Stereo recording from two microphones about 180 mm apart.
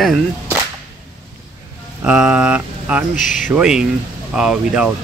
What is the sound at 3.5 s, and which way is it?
Speech, 5° right (ahead or behind).